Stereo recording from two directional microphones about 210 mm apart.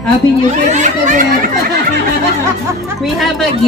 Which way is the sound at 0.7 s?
35° right (ahead or behind).